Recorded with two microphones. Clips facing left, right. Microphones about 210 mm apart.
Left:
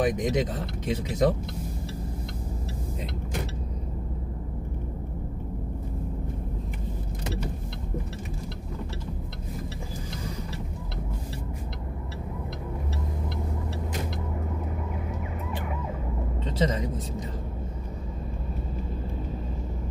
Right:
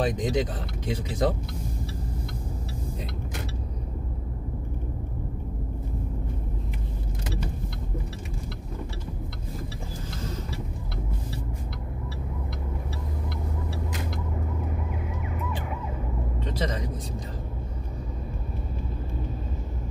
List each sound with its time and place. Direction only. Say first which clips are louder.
0.0 s speech: left 1 dB; 20° left (ahead or behind)
16.5 s vehicle: left 5 dB; 25° left (ahead or behind)